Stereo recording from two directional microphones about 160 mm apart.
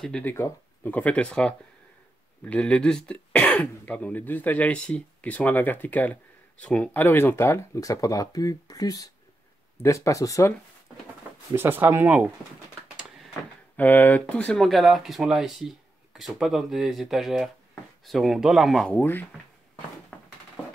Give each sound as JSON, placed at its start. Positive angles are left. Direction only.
{"t": 0.0, "sound": "speech", "side_deg": 10}
{"t": 11.5, "sound": "speech", "side_deg": -15}
{"t": 13.7, "sound": "speech", "side_deg": 10}
{"t": 18.9, "sound": "speech", "side_deg": 15}
{"t": 20.1, "sound": "a sound", "side_deg": 10}